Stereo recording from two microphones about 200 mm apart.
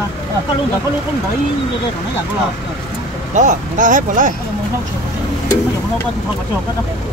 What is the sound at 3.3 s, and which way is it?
Speech, 40° right (ahead or behind).